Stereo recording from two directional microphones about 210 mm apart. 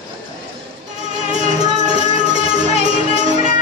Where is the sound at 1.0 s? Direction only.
35° right (ahead or behind).